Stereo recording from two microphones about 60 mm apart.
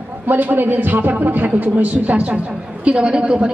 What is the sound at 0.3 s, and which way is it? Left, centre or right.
A woman's voice, right.